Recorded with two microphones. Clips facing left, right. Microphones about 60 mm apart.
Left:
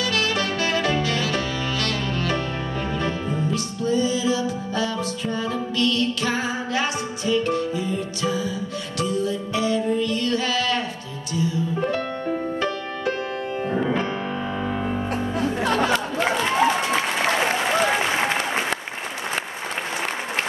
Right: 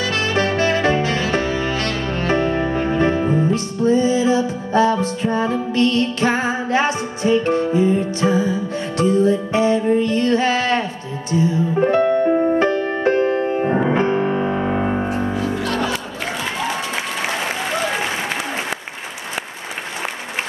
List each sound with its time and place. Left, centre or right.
0.0 s music: right
15.5 s music: left